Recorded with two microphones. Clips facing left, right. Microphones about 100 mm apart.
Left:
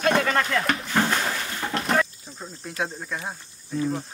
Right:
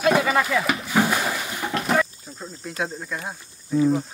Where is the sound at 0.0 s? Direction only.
5° right (ahead or behind).